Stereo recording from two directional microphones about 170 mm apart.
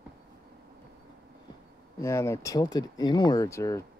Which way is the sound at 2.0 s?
15° left (ahead or behind).